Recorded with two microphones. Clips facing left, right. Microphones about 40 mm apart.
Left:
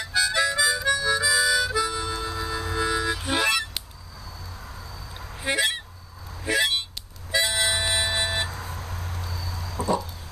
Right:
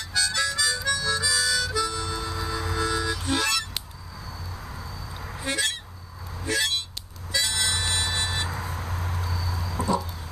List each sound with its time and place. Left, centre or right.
0.0 s harmonica: centre
5.4 s honk: centre
6.4 s vehicle: centre
7.3 s music: centre
8.5 s vehicle: centre